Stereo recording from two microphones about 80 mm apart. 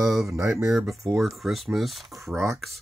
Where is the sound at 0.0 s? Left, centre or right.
Centre.